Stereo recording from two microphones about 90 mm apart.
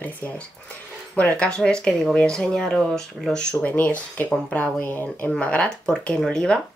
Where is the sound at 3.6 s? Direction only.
15° left (ahead or behind).